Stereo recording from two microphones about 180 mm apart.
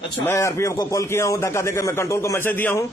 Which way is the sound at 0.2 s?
15° left (ahead or behind).